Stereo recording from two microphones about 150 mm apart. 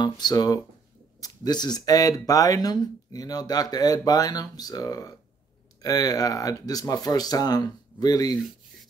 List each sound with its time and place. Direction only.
0.0 s speech: 25° left (ahead or behind)